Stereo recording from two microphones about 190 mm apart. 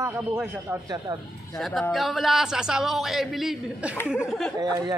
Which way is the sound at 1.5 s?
Centre (ahead or behind).